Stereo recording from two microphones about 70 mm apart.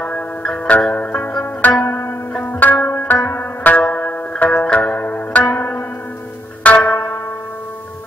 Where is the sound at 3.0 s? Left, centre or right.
Left.